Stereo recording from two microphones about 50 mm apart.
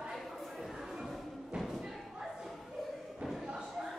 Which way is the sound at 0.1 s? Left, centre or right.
Centre.